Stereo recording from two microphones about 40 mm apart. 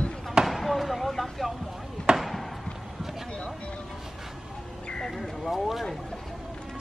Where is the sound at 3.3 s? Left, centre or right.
Left.